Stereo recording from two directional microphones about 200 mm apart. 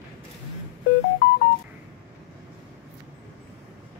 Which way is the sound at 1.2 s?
55° left (ahead or behind).